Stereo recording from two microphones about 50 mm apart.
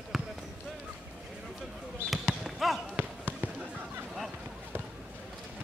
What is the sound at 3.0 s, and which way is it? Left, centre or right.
Basketball bounce, right.